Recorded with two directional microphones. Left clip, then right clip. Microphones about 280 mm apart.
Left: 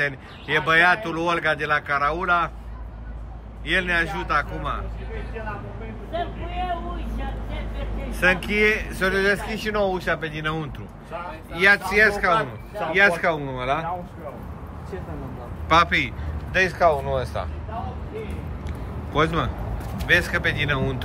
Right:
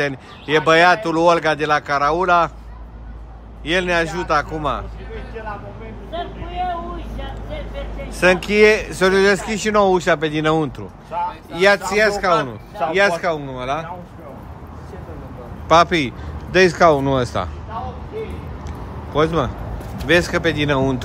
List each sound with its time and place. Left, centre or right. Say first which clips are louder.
0.0 s speech: right 3 dB; centre
3.6 s speech: right 4 dB; centre
8.1 s a man's voice: right 5 dB; centre
15.7 s speech: right 5 dB; centre
19.1 s speech: right 4 dB; centre